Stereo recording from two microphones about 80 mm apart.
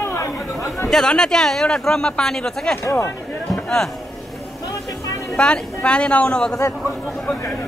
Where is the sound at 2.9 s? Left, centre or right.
Left.